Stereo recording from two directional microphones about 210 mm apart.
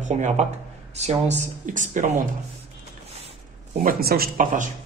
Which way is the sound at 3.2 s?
30° right (ahead or behind).